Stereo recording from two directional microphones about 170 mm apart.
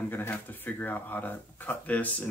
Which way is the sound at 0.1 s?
10° left (ahead or behind).